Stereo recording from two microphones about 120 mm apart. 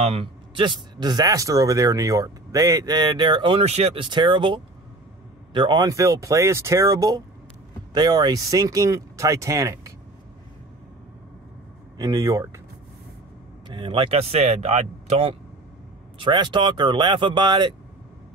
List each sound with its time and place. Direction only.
0.0 s speech: 55° right (ahead or behind)
3.6 s speech: 60° right (ahead or behind)
4.0 s speech: 40° right (ahead or behind)
12.0 s speech: 30° right (ahead or behind)
13.7 s speech: 45° right (ahead or behind)
16.2 s speech: 40° right (ahead or behind)